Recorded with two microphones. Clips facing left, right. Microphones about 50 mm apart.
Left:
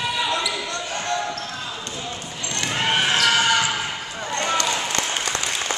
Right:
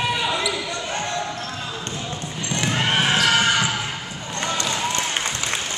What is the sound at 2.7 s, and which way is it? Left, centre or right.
Basketball bounce, centre.